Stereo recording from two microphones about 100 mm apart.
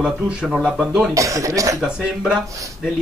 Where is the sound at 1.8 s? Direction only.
5° right (ahead or behind).